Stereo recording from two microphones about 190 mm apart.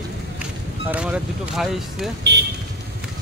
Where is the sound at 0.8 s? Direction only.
5° right (ahead or behind).